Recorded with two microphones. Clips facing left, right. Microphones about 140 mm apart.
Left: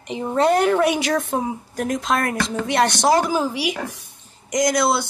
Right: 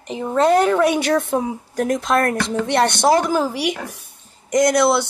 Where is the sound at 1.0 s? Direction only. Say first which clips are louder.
Right 3 dB; 60° right (ahead or behind).